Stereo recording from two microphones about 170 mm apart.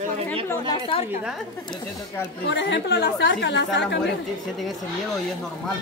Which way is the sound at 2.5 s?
90° left.